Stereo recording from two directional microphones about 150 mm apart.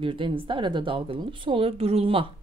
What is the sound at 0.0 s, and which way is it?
Speech, 35° right (ahead or behind).